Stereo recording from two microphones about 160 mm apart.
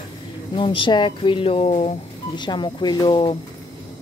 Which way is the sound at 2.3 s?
30° left (ahead or behind).